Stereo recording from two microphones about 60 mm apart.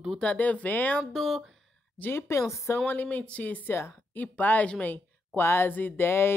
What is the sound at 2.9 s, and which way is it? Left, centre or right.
Speech, left.